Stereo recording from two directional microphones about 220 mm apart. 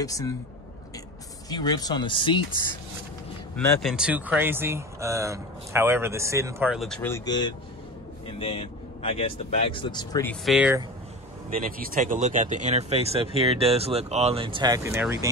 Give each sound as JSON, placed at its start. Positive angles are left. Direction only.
{"t": 0.0, "sound": "speech", "side_deg": 15}
{"t": 1.5, "sound": "speech", "side_deg": 20}
{"t": 3.5, "sound": "speech", "side_deg": 0}
{"t": 6.7, "sound": "speech", "side_deg": 0}
{"t": 10.2, "sound": "speech", "side_deg": 0}
{"t": 11.6, "sound": "speech", "side_deg": -40}